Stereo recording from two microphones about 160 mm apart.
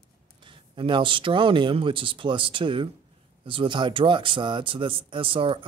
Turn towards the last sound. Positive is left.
turn(degrees=-35)  # may be behind; listen again after turning